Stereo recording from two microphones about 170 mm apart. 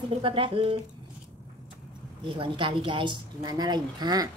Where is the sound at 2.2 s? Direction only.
30° right (ahead or behind).